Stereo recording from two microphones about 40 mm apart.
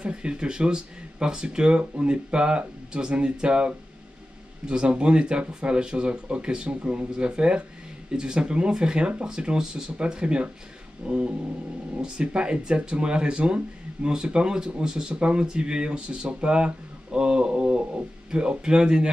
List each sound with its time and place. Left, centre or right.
0.0 s speech: right